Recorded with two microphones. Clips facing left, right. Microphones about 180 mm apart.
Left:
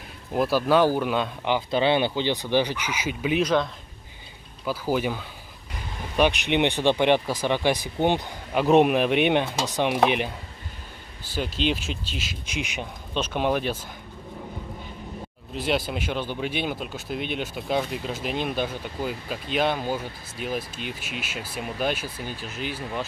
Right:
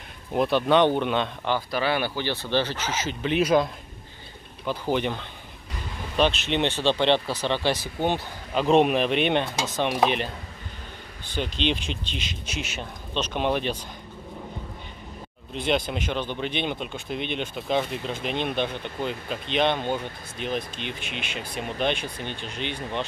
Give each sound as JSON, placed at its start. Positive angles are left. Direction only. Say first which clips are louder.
{"t": 0.3, "sound": "speech", "louder": "even", "side_deg": 5}
{"t": 1.4, "sound": "speech", "louder": "left 3 dB", "side_deg": 20}
{"t": 4.6, "sound": "speech", "louder": "even", "side_deg": 5}
{"t": 11.3, "sound": "speech", "louder": "left 1 dB", "side_deg": 5}
{"t": 15.5, "sound": "speech", "louder": "right 1 dB", "side_deg": 5}